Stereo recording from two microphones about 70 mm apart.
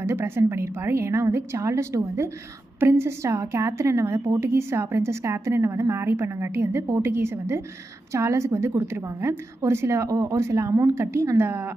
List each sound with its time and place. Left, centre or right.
0.1 s a woman's voice: right
11.0 s a woman's voice: right